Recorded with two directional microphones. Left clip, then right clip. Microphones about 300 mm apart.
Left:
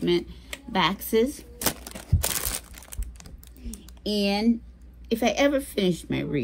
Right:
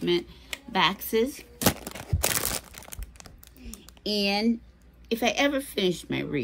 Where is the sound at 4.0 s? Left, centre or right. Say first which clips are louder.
Even; centre.